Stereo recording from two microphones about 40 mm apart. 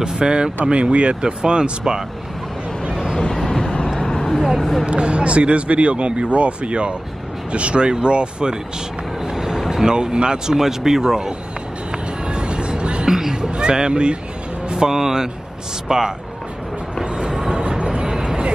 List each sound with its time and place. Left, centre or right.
0.0 s a man's voice: centre
4.1 s a sound: centre
4.6 s speech: centre
4.8 s a man's voice: right
11.9 s music: right
13.1 s a sound: centre
13.5 s a man's voice: right
17.0 s train: right
17.3 s vehicle: centre
17.6 s vehicle: right